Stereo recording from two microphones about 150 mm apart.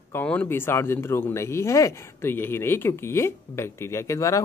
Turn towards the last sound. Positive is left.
turn(degrees=20)  # may be behind; listen again after turning